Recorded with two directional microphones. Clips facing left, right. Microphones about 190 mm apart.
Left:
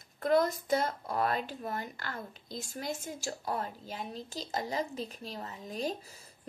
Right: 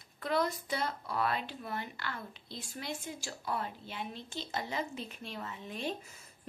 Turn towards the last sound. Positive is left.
turn(degrees=35)  # may be behind; listen again after turning